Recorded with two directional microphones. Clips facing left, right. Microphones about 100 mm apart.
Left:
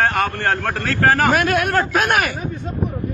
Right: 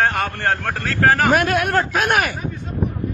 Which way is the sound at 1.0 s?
Centre (ahead or behind).